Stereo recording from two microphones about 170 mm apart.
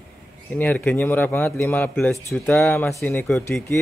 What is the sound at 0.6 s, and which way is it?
A man's voice, 10° left (ahead or behind).